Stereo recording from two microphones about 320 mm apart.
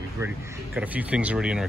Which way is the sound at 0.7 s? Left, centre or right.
Centre.